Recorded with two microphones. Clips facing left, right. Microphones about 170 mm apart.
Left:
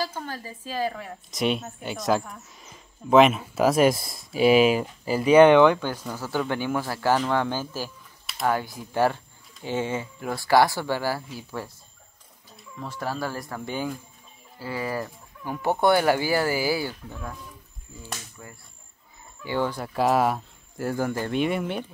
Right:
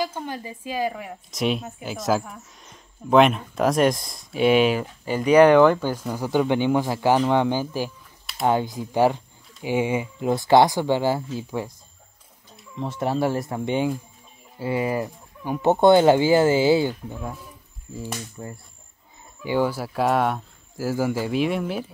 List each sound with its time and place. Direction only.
0.0 s speech: 15° right (ahead or behind)
1.3 s speech: centre (ahead or behind); by 11.7 s 15° right (ahead or behind)
12.7 s speech: 25° right (ahead or behind)
18.4 s speech: 30° right (ahead or behind)
19.4 s speech: 10° right (ahead or behind)